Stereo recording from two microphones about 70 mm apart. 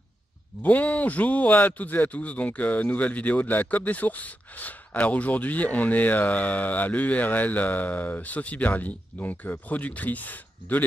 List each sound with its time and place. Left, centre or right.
0.6 s a man's voice: left